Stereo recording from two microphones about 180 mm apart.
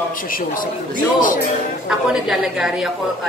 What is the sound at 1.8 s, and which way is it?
A woman's voice, 5° right (ahead or behind).